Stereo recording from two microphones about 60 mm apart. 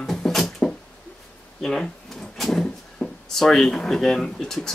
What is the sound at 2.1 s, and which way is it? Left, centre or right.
Drawer open or close, centre.